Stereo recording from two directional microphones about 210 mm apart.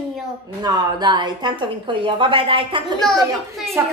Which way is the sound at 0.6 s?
20° right (ahead or behind).